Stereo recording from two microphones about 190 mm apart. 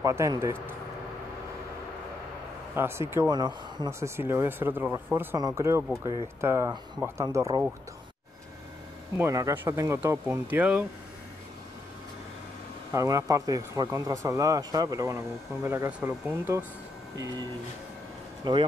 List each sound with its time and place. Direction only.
0.0 s speech: 15° right (ahead or behind)
2.7 s speech: 10° right (ahead or behind)
9.2 s speech: 15° right (ahead or behind)
12.9 s speech: 15° right (ahead or behind)
18.4 s a man's voice: 25° right (ahead or behind)